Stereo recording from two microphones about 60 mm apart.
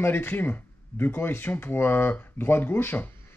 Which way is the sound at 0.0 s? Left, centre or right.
Left.